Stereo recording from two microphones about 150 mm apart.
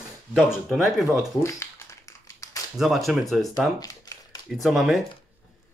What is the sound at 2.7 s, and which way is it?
Speech, centre (ahead or behind).